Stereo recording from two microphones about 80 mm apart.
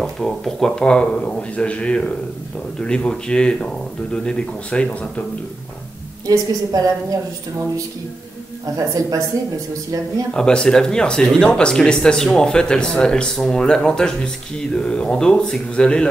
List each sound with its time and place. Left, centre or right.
0.0 s speech: centre
6.2 s a woman's voice: right
8.7 s a woman's voice: right
10.3 s speech: centre